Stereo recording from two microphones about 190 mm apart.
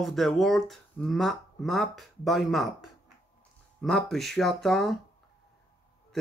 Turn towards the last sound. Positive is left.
turn(degrees=0)  # may be behind; listen again after turning